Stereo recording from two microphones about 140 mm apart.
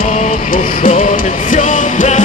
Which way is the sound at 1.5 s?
65° left (ahead or behind).